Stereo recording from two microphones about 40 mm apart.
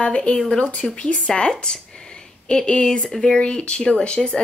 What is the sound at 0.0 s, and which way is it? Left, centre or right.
Speech, left.